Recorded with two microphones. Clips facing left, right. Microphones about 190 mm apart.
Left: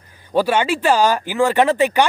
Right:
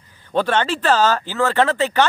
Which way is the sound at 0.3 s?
10° left (ahead or behind).